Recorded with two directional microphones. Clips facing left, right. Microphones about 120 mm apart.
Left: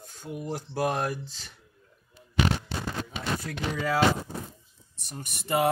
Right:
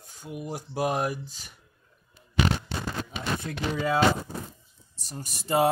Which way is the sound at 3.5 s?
25° right (ahead or behind).